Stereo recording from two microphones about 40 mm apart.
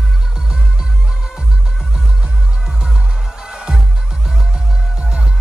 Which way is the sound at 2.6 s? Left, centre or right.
Centre.